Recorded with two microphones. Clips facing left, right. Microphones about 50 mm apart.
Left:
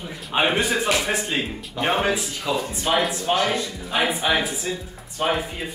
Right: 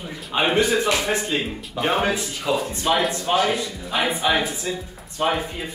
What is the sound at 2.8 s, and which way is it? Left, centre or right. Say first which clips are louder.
Speech: right 1 dB; centre.